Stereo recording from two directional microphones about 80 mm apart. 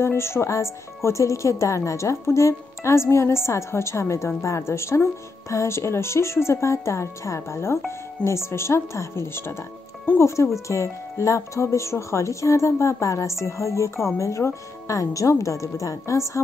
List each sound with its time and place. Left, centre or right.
0.0 s speech: left